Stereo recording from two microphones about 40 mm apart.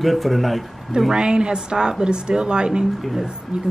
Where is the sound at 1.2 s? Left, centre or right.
Right.